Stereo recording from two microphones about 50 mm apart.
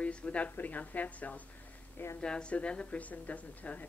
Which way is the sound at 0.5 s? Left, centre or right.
Left.